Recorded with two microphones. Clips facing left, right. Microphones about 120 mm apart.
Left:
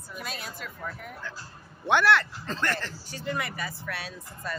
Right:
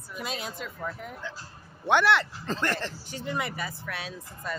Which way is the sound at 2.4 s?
35° right (ahead or behind).